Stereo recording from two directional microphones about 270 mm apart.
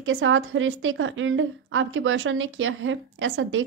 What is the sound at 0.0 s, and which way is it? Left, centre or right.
A woman's voice, right.